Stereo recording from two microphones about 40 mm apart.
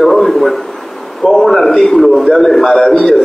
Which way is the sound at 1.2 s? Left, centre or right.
Centre.